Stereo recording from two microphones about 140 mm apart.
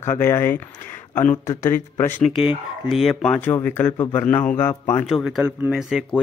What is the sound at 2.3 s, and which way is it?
Speech, centre (ahead or behind).